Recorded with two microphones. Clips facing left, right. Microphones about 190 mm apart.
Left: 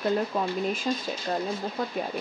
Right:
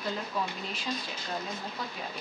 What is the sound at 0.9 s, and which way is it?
Speech, 45° left (ahead or behind).